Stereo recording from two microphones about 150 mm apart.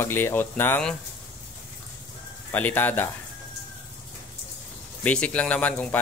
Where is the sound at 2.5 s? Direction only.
10° left (ahead or behind).